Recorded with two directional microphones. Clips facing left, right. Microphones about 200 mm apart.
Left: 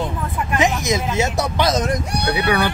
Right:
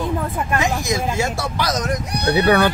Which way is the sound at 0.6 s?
20° left (ahead or behind).